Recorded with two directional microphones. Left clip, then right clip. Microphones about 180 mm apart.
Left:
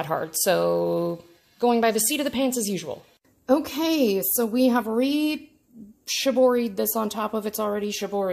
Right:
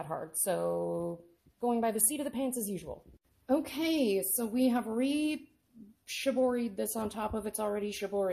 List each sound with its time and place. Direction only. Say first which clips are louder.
0.0 s a woman's voice: left 12 dB; 5° left (ahead or behind)
3.4 s speech: left 9 dB; 20° left (ahead or behind)